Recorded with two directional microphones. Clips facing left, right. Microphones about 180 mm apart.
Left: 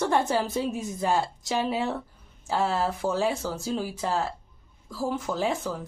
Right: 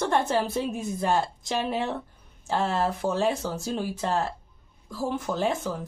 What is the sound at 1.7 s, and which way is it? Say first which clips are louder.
Speech: even; 5° left (ahead or behind).